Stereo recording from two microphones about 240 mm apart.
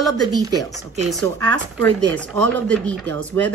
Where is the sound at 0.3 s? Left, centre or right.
Centre.